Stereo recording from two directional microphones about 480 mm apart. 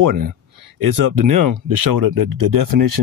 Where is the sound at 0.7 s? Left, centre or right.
Right.